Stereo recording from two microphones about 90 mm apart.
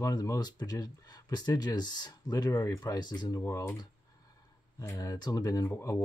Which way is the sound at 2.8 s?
50° left (ahead or behind).